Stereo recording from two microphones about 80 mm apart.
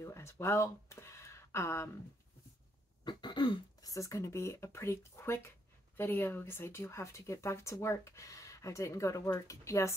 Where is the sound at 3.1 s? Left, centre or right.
Left.